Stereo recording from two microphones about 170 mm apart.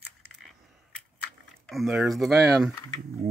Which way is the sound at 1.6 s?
Centre (ahead or behind).